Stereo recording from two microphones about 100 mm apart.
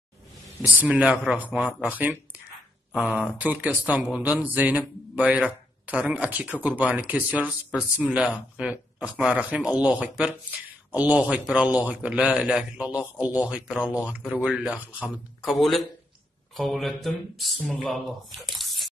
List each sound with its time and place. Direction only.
0.9 s speech: 10° right (ahead or behind)
15.6 s speech: centre (ahead or behind)